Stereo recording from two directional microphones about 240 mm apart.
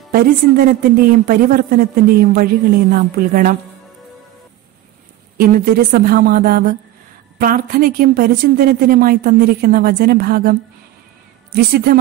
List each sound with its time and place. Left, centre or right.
0.1 s a woman's voice: right
5.4 s a woman's voice: right